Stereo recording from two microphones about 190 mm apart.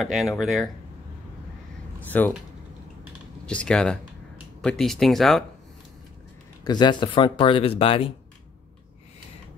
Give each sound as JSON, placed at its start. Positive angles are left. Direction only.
{"t": 0.0, "sound": "speech", "side_deg": 0}
{"t": 2.1, "sound": "speech", "side_deg": 10}
{"t": 3.4, "sound": "speech", "side_deg": 5}
{"t": 6.6, "sound": "speech", "side_deg": 20}